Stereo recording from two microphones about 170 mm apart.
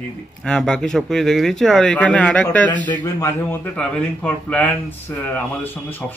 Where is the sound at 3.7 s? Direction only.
5° left (ahead or behind).